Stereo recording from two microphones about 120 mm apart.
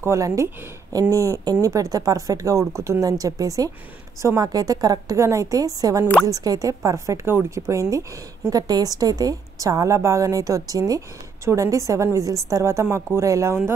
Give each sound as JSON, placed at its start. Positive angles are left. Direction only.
{"t": 0.0, "sound": "a woman's voice", "side_deg": -25}